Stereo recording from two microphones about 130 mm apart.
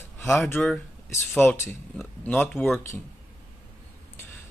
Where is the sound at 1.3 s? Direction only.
15° left (ahead or behind).